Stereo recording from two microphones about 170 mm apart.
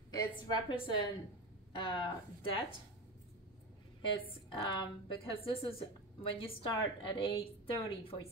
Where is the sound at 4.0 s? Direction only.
30° left (ahead or behind).